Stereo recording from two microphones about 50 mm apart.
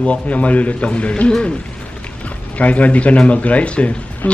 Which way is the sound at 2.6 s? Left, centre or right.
Left.